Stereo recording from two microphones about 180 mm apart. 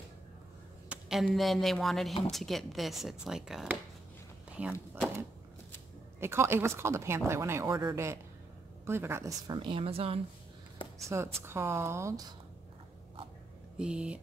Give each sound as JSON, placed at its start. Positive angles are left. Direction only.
{"t": 0.8, "sound": "speech", "side_deg": -5}
{"t": 6.1, "sound": "a woman's voice", "side_deg": -15}
{"t": 11.1, "sound": "speech", "side_deg": -15}
{"t": 13.7, "sound": "speech", "side_deg": -5}